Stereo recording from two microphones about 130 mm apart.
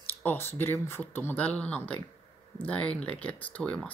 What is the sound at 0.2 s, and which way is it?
Speech, 15° left (ahead or behind).